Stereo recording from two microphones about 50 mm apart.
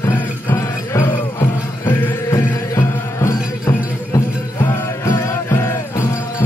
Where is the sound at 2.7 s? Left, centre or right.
Left.